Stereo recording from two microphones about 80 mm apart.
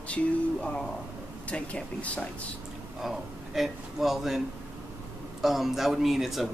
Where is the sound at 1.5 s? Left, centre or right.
Centre.